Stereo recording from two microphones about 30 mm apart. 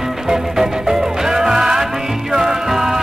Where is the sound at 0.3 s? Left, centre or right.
Centre.